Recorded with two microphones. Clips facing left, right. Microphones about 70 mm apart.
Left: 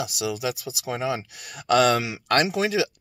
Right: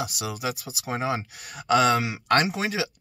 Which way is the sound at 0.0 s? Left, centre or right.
Right.